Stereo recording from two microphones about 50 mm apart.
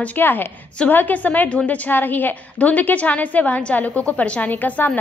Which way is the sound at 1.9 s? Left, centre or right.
Left.